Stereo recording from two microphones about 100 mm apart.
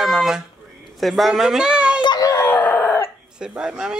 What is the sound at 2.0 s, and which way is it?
Baby cry, 45° left (ahead or behind).